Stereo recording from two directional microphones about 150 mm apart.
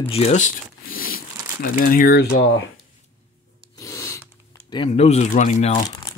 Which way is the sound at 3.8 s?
20° left (ahead or behind).